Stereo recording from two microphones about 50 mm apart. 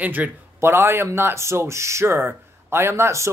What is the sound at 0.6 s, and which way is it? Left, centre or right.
A man's voice, right.